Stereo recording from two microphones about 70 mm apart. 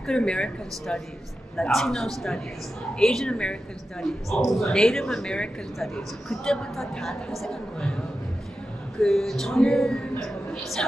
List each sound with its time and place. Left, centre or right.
0.0 s a man's voice: centre
4.0 s a man's voice: centre
9.0 s a man's voice: centre